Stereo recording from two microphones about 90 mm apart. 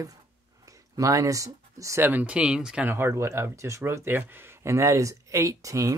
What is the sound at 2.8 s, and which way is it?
Speech, 25° right (ahead or behind).